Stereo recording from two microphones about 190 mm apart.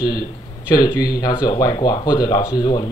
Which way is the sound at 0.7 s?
20° left (ahead or behind).